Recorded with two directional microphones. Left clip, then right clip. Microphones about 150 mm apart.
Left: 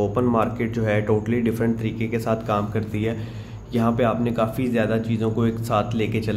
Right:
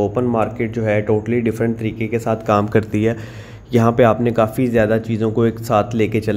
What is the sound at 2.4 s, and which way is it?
Speech, 50° right (ahead or behind).